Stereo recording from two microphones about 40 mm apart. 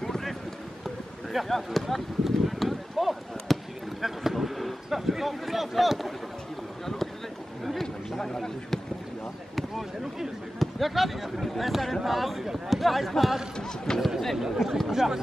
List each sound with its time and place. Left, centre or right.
0.0 s run: centre
1.3 s a sound: centre
4.0 s vehicle: centre
4.8 s speech: centre
8.2 s speech: centre
9.6 s speech: centre
13.6 s speech: centre
14.3 s speech: centre